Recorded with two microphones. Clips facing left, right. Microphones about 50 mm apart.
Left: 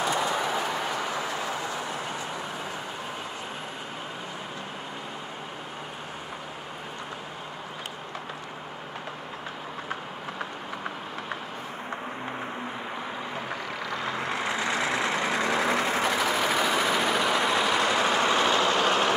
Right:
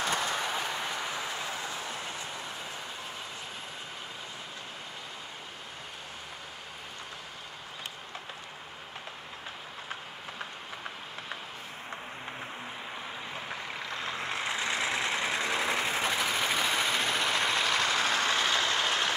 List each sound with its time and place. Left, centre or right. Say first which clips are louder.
0.0 s a sound: left 4 dB; left
0.6 s vehicle: left 5 dB; left
14.0 s vehicle: left 4 dB; left